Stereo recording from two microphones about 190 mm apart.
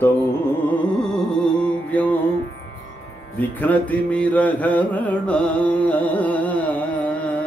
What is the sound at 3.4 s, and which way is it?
Music, 10° left (ahead or behind).